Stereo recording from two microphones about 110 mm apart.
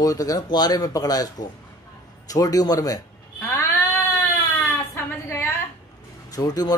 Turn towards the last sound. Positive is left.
turn(degrees=35)  # may be behind; listen again after turning